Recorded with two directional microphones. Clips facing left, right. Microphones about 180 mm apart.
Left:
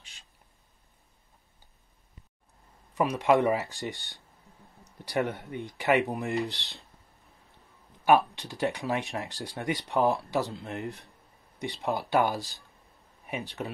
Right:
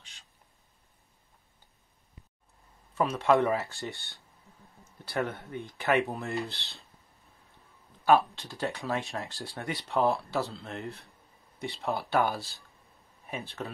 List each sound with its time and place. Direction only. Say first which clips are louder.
2.9 s speech: left 1 dB; 15° left (ahead or behind)
8.0 s speech: left 1 dB; 15° left (ahead or behind)